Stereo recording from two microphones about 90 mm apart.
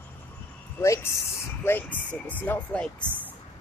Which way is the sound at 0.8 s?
30° left (ahead or behind).